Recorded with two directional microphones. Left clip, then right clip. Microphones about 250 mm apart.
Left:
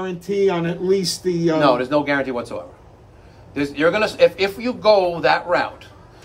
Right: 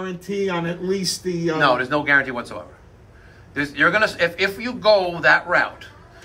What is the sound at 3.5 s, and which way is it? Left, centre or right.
A man's voice, centre.